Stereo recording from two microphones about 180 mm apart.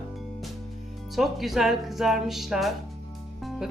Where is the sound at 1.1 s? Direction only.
Centre (ahead or behind).